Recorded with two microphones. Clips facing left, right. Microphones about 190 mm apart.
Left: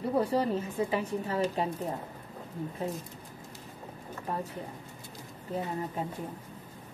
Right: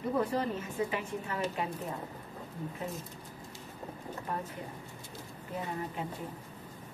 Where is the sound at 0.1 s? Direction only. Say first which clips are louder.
Left 4 dB; 30° left (ahead or behind).